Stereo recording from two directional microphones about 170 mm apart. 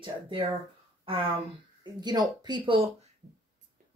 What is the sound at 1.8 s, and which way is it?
Speech, 25° right (ahead or behind).